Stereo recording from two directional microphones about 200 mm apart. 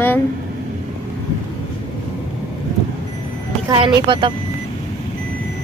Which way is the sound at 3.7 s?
25° right (ahead or behind).